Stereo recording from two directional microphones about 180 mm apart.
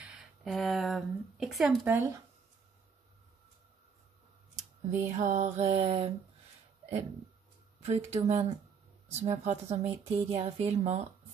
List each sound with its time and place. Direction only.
0.0 s a sound: 5° right (ahead or behind)
1.9 s speech: 15° right (ahead or behind)
5.0 s speech: 45° right (ahead or behind)
7.8 s speech: 35° right (ahead or behind)